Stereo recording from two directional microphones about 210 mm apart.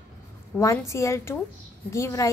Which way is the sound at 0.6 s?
15° left (ahead or behind).